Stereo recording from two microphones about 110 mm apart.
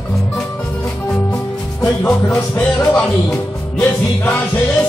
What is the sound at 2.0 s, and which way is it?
Music, 10° left (ahead or behind).